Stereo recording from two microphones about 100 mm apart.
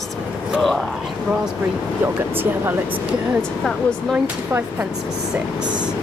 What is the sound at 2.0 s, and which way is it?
Speech, 20° right (ahead or behind).